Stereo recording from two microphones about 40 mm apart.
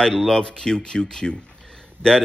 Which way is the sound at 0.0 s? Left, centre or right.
Centre.